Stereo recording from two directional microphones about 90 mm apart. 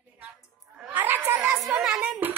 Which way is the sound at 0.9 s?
20° right (ahead or behind).